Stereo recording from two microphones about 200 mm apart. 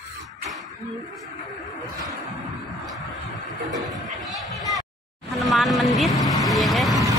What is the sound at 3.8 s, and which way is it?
Chatter, centre (ahead or behind).